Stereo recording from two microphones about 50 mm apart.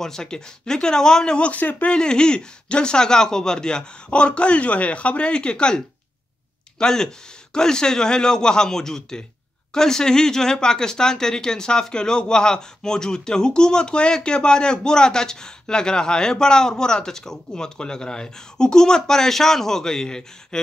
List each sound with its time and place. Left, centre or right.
0.0 s speech: centre
1.5 s speech: left
1.9 s speech: centre